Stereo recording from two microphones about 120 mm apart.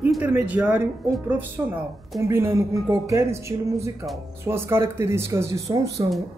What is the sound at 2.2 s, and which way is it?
Speech, 20° right (ahead or behind).